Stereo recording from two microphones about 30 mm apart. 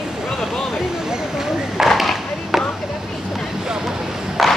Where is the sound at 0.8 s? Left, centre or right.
Centre.